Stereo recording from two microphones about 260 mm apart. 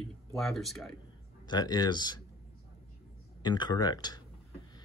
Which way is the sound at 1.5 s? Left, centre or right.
Centre.